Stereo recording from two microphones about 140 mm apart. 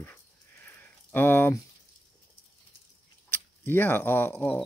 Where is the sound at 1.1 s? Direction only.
15° left (ahead or behind).